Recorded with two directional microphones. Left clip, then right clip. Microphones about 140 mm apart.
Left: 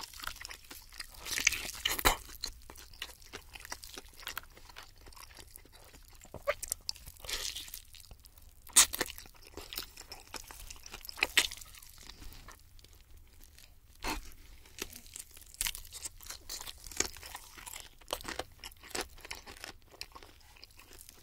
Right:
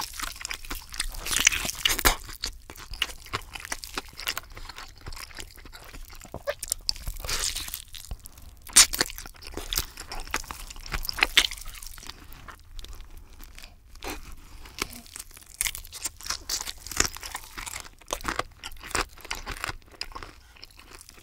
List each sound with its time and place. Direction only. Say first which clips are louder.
0.0 s crunch: right 9 dB; 30° right (ahead or behind)
3.3 s a sound: right 12 dB; 30° right (ahead or behind)
6.3 s crunch: right 3 dB; 20° right (ahead or behind)
15.5 s crunch: right 7 dB; 25° right (ahead or behind)
16.9 s tearing: right 10 dB; 30° right (ahead or behind)